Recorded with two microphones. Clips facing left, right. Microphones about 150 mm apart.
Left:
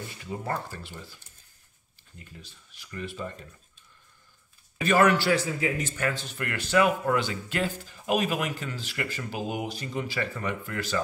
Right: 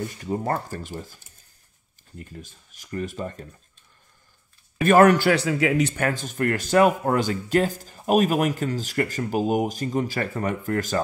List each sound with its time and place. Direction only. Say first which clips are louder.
0.2 s speech: right 5 dB; 45° right (ahead or behind)
4.7 s speech: right 6 dB; 50° right (ahead or behind)
5.3 s speech: right 5 dB; 75° right (ahead or behind); by 11.0 s 45° right (ahead or behind)